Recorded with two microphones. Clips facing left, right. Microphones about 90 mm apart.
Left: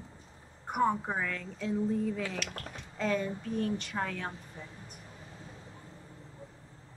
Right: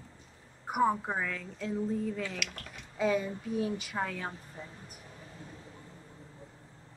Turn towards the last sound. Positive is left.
turn(degrees=-5)  # may be behind; listen again after turning